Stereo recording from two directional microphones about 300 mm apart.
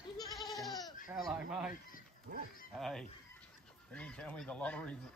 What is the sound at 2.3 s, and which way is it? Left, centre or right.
Speech, right.